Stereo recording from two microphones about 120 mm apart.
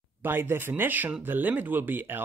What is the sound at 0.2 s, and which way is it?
Speech, 20° right (ahead or behind).